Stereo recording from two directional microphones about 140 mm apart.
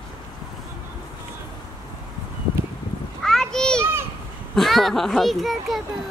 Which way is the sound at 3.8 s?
15° right (ahead or behind).